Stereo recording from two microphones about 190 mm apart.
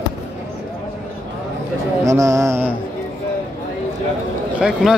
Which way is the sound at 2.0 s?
15° right (ahead or behind).